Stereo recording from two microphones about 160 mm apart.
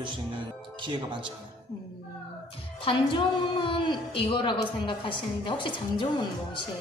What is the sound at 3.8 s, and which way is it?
A woman's voice, 30° left (ahead or behind).